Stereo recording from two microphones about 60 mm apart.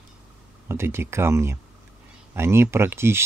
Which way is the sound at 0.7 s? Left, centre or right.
Right.